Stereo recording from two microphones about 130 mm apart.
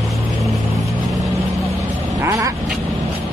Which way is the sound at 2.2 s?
25° right (ahead or behind).